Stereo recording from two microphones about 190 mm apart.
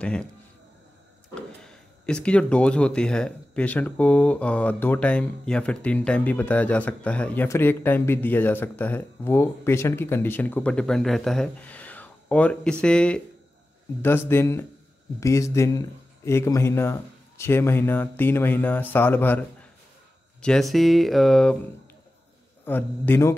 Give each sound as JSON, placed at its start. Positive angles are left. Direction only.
{"t": 0.0, "sound": "speech", "side_deg": 5}
{"t": 1.6, "sound": "speech", "side_deg": 5}
{"t": 20.4, "sound": "speech", "side_deg": 0}
{"t": 22.7, "sound": "speech", "side_deg": 10}